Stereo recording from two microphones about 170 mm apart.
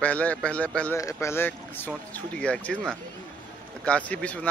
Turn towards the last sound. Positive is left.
turn(degrees=10)  # may be behind; listen again after turning